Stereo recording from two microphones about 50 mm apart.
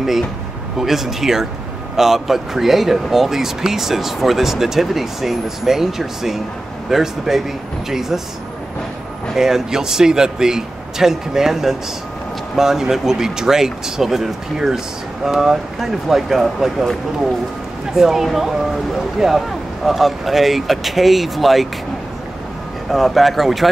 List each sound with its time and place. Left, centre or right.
0.7 s speech: centre
9.3 s speech: centre
17.9 s speech: centre
22.8 s speech: centre